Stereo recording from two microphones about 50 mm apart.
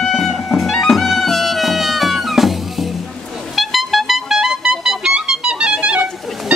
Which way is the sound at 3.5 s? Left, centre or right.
Centre.